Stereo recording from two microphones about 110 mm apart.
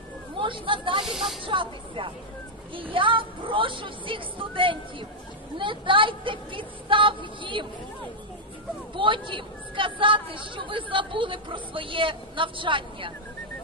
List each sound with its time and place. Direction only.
0.4 s speech: 50° right (ahead or behind)
1.0 s speech: centre (ahead or behind)
1.4 s speech: 50° right (ahead or behind)
8.9 s speech: 50° right (ahead or behind)